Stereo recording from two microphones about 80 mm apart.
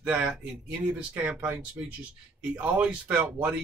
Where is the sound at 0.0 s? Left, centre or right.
Centre.